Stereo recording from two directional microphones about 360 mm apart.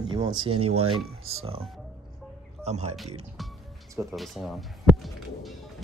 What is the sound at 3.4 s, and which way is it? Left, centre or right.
Music, centre.